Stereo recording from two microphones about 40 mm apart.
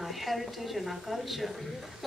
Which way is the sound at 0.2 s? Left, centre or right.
Centre.